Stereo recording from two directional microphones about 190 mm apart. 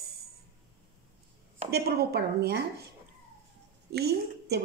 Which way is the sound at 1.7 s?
55° right (ahead or behind).